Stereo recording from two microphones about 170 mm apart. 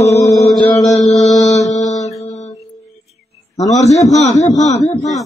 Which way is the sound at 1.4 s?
40° left (ahead or behind).